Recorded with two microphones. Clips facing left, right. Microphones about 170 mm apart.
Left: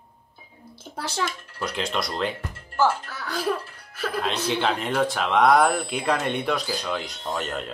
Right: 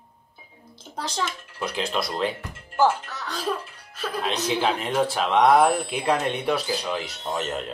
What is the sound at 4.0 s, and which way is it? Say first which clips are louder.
Speech: even; 10° right (ahead or behind).